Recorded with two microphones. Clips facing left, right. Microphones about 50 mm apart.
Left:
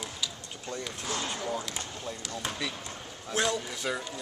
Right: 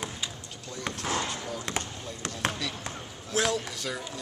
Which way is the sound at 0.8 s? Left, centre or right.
Right.